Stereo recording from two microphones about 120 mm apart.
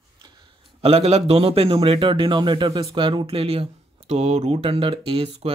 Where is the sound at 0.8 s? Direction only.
60° right (ahead or behind).